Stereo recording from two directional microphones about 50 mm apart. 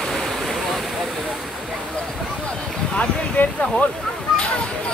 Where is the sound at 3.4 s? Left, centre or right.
Left.